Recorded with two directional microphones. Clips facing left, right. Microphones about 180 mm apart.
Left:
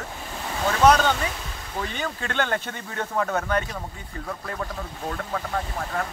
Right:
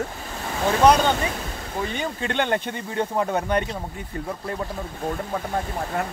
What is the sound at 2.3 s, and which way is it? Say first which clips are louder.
Speech: right 3 dB; 15° right (ahead or behind).